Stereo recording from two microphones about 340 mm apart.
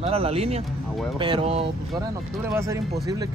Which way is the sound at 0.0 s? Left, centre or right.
Centre.